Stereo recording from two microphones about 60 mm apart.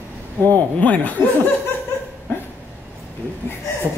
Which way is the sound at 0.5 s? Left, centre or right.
Left.